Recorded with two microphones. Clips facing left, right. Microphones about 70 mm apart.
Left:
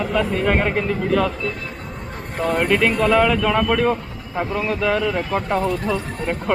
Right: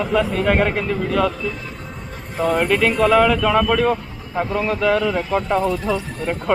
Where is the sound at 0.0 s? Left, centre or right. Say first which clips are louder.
Right 1 dB; centre.